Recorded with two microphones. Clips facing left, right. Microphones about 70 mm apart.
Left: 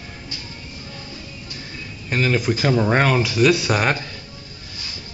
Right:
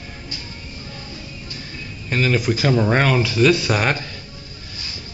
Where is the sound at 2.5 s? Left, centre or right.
Centre.